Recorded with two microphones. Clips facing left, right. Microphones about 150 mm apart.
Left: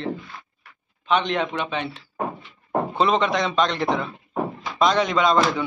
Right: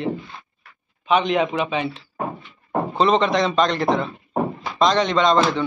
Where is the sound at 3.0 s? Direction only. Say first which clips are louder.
Right 3 dB; centre (ahead or behind).